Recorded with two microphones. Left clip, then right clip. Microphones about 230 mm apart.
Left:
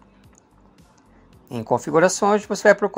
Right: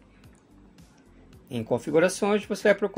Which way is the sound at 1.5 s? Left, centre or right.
Centre.